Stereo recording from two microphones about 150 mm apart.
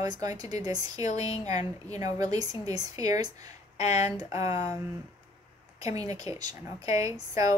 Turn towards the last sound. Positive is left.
turn(degrees=-20)  # may be behind; listen again after turning